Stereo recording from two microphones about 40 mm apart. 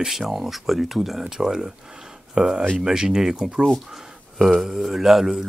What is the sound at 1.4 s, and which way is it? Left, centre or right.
Speech, centre.